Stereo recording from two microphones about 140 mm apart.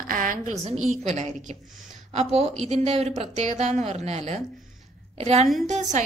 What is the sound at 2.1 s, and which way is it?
A woman's voice, 45° right (ahead or behind).